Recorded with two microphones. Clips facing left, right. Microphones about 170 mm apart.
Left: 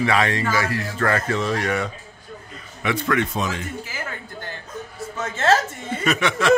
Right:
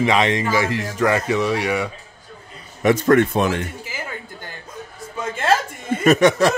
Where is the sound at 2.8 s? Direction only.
45° right (ahead or behind); by 3.7 s 60° right (ahead or behind).